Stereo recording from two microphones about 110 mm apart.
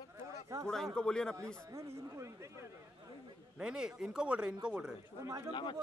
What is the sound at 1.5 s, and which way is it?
Speech, 25° right (ahead or behind).